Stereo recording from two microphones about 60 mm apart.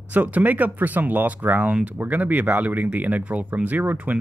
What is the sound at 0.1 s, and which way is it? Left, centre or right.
Speech, right.